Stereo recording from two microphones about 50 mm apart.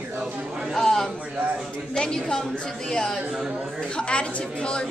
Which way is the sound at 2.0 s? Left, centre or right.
Centre.